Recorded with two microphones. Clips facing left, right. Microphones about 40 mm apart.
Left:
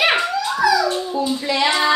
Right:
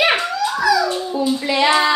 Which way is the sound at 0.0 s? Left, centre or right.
Centre.